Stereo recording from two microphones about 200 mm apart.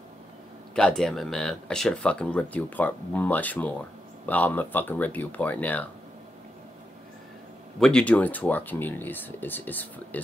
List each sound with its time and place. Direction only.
0.7 s speech: 5° left (ahead or behind)
7.8 s speech: 5° left (ahead or behind)